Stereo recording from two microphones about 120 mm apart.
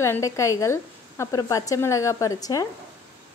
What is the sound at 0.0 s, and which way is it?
Speech, 25° left (ahead or behind).